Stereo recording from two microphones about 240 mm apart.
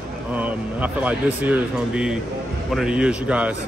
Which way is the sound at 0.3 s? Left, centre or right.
Centre.